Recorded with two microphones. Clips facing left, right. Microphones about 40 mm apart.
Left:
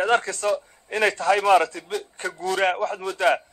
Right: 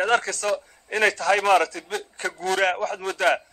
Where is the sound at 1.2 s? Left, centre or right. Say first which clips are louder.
Left 3 dB; right.